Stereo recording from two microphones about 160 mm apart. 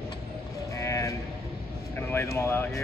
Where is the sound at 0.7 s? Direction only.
20° left (ahead or behind).